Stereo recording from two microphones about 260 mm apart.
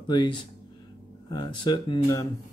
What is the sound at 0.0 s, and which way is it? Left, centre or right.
Speech, centre.